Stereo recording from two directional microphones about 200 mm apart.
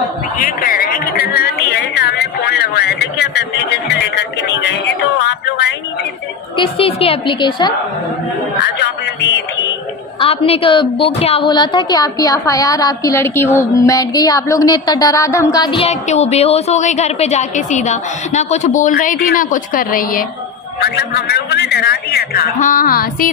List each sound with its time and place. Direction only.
0.4 s speech: 45° left (ahead or behind)
6.5 s a woman's voice: 25° left (ahead or behind)
8.7 s a sound: 60° left (ahead or behind)
10.2 s a woman's voice: 30° left (ahead or behind); by 23.3 s 45° left (ahead or behind)